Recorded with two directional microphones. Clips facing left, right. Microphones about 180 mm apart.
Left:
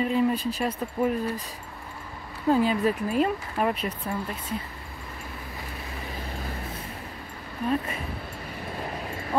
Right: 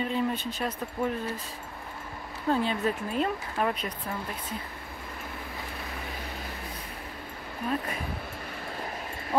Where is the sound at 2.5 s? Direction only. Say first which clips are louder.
Left 5 dB; 10° left (ahead or behind).